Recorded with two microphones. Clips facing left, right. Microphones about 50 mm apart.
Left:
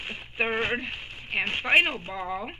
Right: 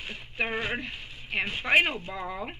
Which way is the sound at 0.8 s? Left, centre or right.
Left.